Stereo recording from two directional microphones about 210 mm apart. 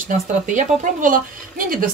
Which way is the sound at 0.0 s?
40° right (ahead or behind).